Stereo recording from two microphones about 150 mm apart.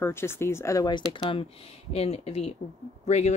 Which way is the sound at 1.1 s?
35° left (ahead or behind).